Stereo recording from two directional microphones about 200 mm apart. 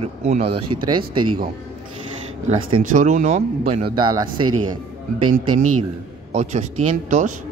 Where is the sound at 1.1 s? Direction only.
90° right.